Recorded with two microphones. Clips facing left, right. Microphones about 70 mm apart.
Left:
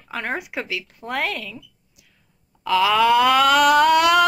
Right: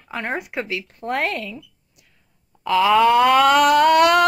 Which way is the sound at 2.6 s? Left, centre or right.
Centre.